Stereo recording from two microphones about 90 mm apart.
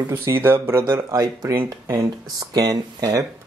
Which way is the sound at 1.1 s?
40° right (ahead or behind).